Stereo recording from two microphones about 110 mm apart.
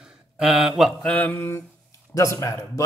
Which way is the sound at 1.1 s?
15° left (ahead or behind).